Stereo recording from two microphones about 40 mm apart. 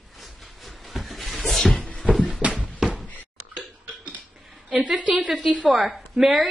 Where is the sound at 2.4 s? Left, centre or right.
Right.